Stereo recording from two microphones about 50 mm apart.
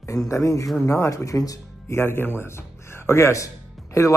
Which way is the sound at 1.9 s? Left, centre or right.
Left.